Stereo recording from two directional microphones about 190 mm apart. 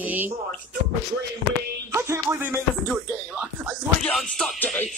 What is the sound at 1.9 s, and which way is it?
Music, 15° right (ahead or behind).